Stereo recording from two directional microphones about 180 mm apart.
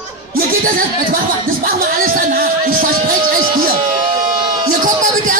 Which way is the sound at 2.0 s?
50° right (ahead or behind).